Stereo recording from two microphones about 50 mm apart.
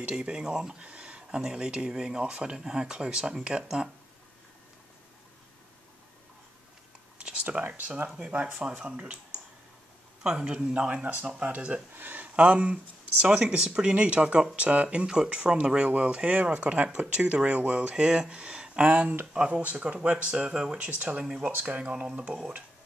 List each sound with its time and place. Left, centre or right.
0.1 s speech: centre
7.2 s a sound: right
7.4 s speech: right
8.6 s speech: centre
10.2 s speech: centre
11.9 s a sound: right
12.4 s speech: right
21.5 s speech: right
21.7 s speech: right